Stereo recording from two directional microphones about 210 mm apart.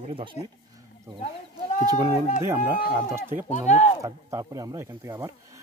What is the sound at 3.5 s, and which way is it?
Speech, 35° left (ahead or behind).